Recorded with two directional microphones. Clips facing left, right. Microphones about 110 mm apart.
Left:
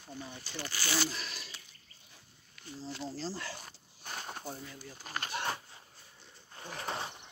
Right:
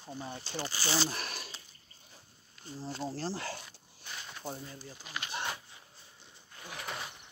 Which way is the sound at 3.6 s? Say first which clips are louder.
Left 2 dB; 45° left (ahead or behind).